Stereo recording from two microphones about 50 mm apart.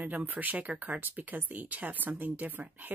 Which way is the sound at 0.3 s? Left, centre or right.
Right.